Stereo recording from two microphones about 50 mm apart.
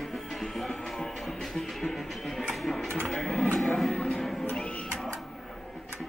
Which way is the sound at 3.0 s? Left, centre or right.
Centre.